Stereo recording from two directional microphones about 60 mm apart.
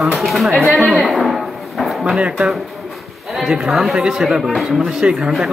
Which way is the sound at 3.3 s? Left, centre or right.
Centre.